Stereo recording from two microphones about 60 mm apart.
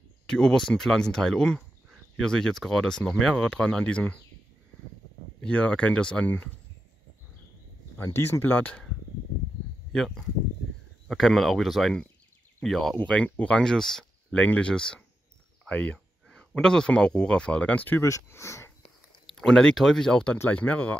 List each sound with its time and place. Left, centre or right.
0.3 s speech: centre
3.4 s speech: left
5.4 s speech: centre
6.2 s speech: left
8.0 s speech: left
9.9 s speech: centre
12.9 s speech: centre
14.3 s speech: left
18.3 s speech: left
19.2 s speech: centre
20.4 s speech: left